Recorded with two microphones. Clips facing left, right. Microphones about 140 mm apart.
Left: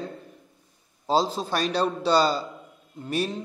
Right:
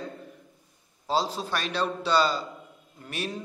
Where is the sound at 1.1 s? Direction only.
35° left (ahead or behind).